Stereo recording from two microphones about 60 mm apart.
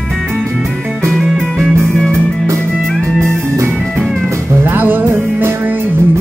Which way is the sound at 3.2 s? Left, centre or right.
Right.